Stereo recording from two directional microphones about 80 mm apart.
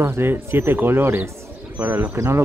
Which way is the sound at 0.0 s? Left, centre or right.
Right.